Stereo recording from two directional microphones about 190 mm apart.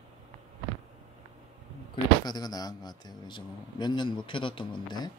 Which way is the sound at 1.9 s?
20° left (ahead or behind).